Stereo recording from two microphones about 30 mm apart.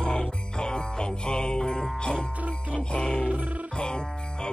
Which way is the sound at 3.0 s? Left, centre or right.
Left.